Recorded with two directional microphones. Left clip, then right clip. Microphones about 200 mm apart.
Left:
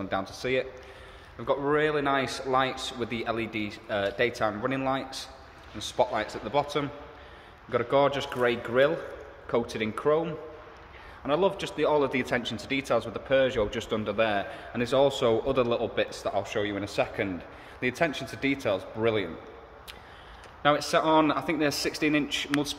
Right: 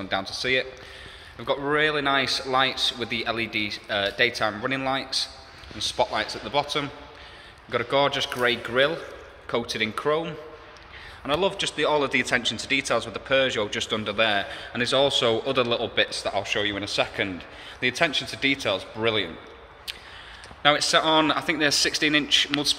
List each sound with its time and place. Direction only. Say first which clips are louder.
0.0 s a man's voice: right 4 dB; 5° left (ahead or behind)
20.6 s a man's voice: right 4 dB; 10° left (ahead or behind)